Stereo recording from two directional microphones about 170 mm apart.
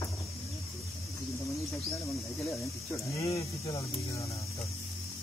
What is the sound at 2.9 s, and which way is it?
Speech, 20° left (ahead or behind).